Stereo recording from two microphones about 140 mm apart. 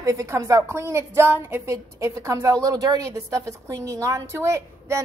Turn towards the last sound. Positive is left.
turn(degrees=-20)  # may be behind; listen again after turning